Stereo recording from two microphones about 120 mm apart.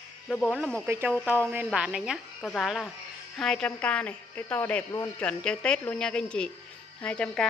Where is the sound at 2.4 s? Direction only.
10° left (ahead or behind).